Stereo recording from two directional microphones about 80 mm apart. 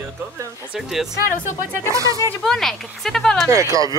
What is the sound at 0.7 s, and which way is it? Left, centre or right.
Speech, centre.